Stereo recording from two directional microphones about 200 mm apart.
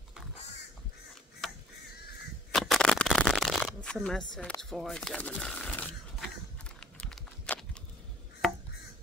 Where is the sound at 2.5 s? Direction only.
Centre (ahead or behind).